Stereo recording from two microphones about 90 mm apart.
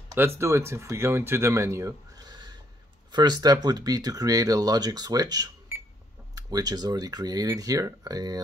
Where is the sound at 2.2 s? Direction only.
50° right (ahead or behind).